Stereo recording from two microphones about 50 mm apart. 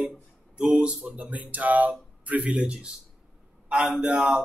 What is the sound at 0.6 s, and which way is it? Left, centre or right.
A man's voice, right.